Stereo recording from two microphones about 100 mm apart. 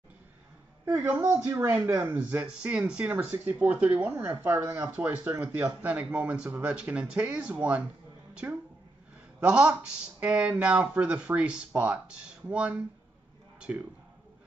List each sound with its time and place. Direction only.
1.3 s speech: 25° right (ahead or behind)
2.0 s speech: 15° right (ahead or behind)
8.4 s speech: 25° right (ahead or behind)
9.4 s speech: 10° right (ahead or behind)